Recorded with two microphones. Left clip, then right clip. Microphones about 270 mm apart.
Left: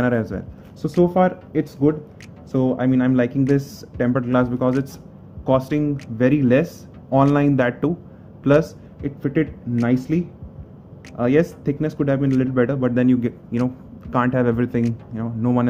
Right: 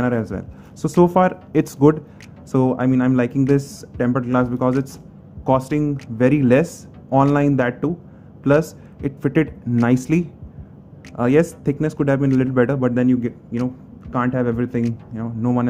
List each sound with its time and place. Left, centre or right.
0.0 s speech: centre
0.8 s speech: right; by 7.9 s centre
8.5 s a man's voice: centre